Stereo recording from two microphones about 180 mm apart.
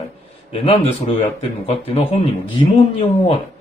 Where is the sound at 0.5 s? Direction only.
35° left (ahead or behind).